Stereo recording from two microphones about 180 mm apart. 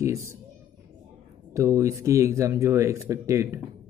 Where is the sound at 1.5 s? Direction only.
15° right (ahead or behind).